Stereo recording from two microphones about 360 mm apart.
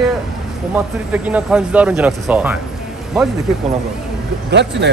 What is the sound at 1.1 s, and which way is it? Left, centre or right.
Speech, centre.